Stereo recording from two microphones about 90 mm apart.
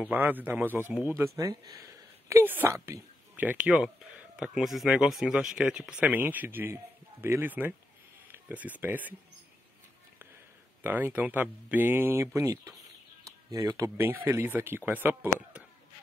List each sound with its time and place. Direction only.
0.0 s speech: 20° right (ahead or behind)
1.1 s speech: 35° right (ahead or behind)
2.4 s speech: 20° right (ahead or behind)
10.8 s speech: 20° right (ahead or behind)
12.4 s speech: 35° right (ahead or behind); by 15.6 s 20° right (ahead or behind)